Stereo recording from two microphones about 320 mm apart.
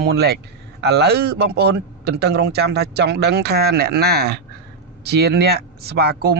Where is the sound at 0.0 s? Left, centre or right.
Right.